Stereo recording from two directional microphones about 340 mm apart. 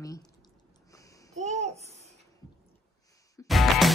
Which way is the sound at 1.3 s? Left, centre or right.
Centre.